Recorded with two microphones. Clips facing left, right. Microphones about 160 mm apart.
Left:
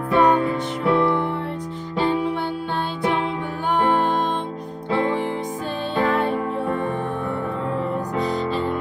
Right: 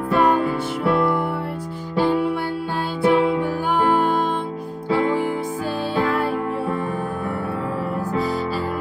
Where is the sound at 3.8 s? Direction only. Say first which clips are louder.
Right 1 dB; 5° right (ahead or behind).